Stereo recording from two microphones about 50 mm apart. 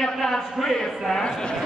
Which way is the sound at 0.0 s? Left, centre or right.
Centre.